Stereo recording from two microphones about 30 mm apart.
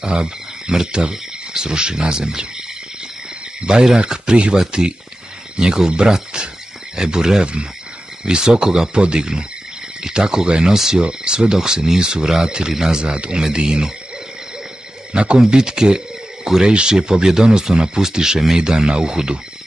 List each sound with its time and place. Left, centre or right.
0.0 s speech: right
4.0 s speech: right
11.0 s speech: right
13.0 s speech: right
15.1 s speech: right
15.4 s speech: right